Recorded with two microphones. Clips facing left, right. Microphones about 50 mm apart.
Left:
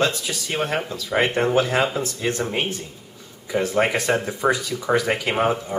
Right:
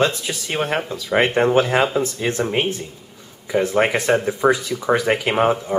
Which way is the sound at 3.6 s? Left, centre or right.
Centre.